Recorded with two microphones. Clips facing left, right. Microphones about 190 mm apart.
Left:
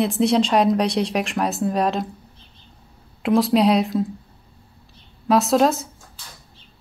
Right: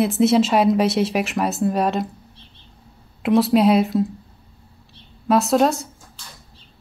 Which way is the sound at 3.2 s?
Centre (ahead or behind).